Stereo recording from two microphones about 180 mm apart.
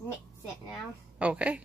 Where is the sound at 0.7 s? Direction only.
5° right (ahead or behind).